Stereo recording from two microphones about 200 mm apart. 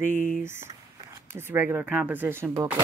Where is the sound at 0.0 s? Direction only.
40° left (ahead or behind).